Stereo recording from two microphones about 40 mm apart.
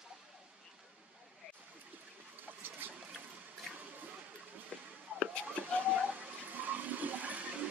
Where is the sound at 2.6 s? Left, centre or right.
Right.